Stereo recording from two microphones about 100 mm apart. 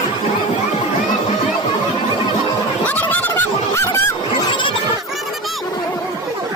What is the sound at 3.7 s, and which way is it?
Goose, 30° left (ahead or behind).